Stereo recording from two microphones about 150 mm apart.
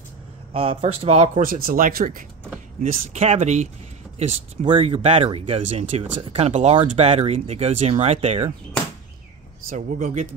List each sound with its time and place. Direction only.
0.5 s speech: 40° right (ahead or behind); by 3.2 s 65° right (ahead or behind)
3.2 s speech: 50° right (ahead or behind)
4.2 s speech: 40° right (ahead or behind)
9.7 s speech: 65° right (ahead or behind)